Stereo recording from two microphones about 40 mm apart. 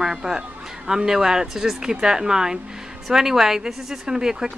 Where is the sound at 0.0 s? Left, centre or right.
Centre.